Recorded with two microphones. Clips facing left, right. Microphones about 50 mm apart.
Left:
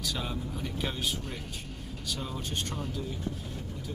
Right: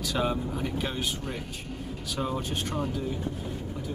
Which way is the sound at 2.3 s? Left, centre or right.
Centre.